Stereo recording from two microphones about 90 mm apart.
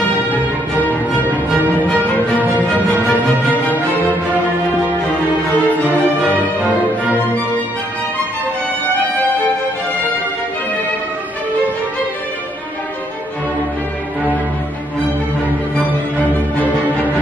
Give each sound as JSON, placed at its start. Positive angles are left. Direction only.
{"t": 1.8, "sound": "music", "side_deg": 20}